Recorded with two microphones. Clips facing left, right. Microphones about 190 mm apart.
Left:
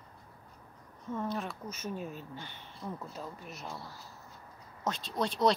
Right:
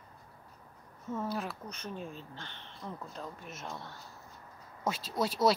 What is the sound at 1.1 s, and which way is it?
Speech, 5° right (ahead or behind).